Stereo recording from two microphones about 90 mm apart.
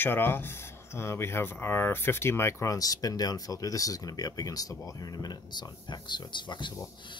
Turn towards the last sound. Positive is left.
turn(degrees=60)  # may be behind; listen again after turning